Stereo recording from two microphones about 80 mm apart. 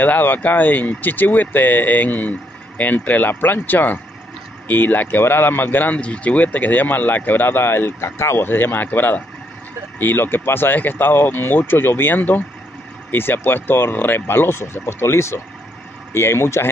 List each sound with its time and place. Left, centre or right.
0.0 s a man's voice: left